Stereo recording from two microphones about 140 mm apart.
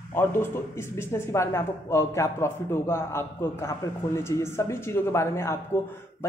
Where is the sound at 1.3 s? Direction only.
20° left (ahead or behind).